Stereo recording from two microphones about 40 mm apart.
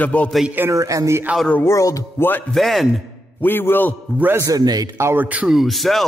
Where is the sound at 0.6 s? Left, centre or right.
Right.